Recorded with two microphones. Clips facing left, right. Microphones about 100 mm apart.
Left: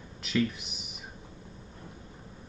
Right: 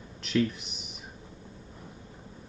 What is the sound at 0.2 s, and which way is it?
Speech, centre (ahead or behind).